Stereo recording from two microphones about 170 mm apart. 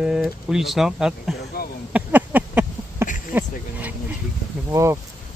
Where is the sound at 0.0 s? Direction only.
5° right (ahead or behind).